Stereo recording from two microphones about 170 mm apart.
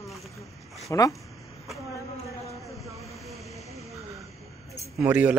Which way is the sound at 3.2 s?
Centre (ahead or behind).